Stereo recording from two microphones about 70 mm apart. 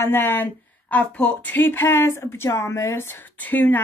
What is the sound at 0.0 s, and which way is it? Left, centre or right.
Speech, left.